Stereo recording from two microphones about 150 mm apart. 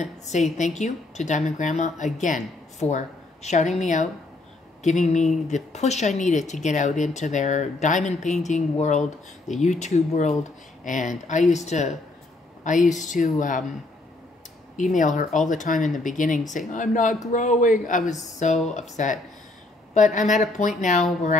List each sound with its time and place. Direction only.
0.0 s a woman's voice: 50° left (ahead or behind)
14.8 s a woman's voice: 55° left (ahead or behind)